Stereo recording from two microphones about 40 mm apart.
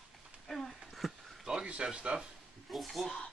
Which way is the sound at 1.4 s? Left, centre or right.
Right.